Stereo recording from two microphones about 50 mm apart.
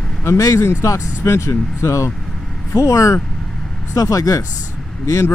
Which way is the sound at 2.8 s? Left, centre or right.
Left.